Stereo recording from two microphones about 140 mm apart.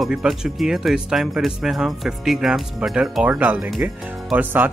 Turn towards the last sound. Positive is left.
turn(degrees=-10)  # may be behind; listen again after turning